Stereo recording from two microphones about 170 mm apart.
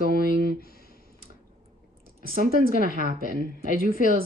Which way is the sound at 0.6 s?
60° left (ahead or behind).